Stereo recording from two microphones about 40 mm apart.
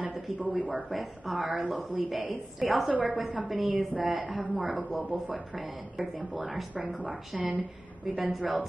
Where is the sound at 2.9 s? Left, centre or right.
Right.